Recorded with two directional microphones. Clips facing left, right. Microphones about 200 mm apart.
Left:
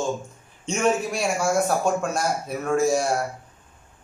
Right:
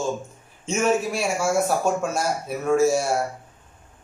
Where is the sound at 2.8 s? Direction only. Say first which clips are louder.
Right 1 dB; 5° right (ahead or behind).